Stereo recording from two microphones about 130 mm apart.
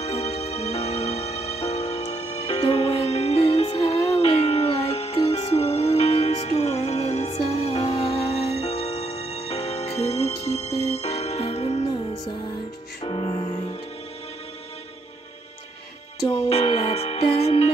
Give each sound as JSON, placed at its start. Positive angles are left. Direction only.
{"t": 0.0, "sound": "music", "side_deg": 55}
{"t": 4.2, "sound": "a sound", "side_deg": 50}
{"t": 4.9, "sound": "music", "side_deg": 55}
{"t": 13.0, "sound": "music", "side_deg": 40}
{"t": 16.3, "sound": "music", "side_deg": 50}